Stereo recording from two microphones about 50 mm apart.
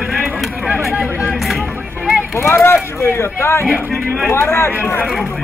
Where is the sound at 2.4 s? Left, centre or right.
Left.